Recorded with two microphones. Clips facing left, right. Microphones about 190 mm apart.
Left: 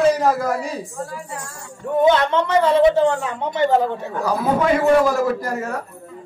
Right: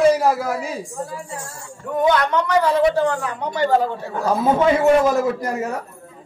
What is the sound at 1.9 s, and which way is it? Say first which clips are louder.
Speech: left 2 dB; 25° left (ahead or behind).